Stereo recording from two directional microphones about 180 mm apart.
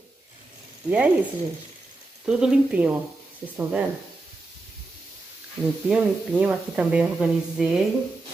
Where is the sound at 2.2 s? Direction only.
5° right (ahead or behind).